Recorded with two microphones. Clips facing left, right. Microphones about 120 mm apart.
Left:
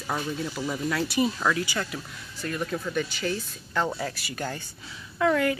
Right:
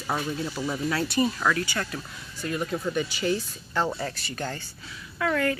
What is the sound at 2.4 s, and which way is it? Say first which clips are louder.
Speech: right 1 dB; 10° right (ahead or behind).